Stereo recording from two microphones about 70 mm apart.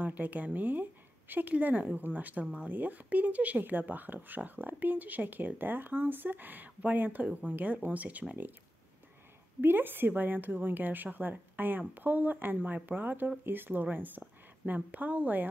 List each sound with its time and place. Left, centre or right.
0.0 s speech: right
9.6 s speech: right